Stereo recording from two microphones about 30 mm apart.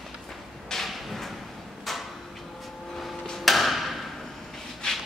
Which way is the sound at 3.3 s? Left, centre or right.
Centre.